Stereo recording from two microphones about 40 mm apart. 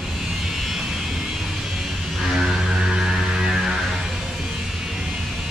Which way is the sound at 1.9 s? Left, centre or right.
Centre.